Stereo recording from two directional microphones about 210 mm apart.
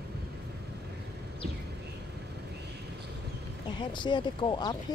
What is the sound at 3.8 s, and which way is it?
Speech, 20° left (ahead or behind).